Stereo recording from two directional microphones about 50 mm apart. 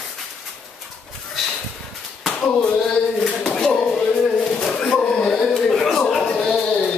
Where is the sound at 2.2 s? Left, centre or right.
Centre.